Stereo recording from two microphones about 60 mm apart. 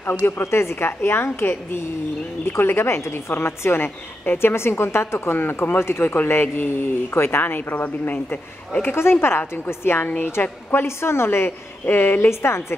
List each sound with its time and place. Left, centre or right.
0.0 s a woman's voice: left
0.4 s a woman's voice: left
10.0 s a woman's voice: left